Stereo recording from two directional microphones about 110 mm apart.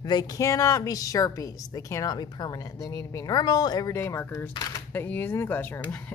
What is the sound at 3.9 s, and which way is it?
Speech, 25° left (ahead or behind).